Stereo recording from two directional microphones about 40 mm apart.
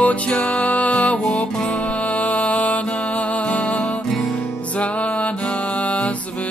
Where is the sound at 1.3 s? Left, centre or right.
Left.